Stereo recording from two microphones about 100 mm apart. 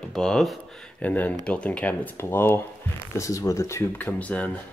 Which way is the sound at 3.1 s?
35° left (ahead or behind).